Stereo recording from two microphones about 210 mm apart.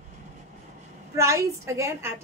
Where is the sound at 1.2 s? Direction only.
15° right (ahead or behind).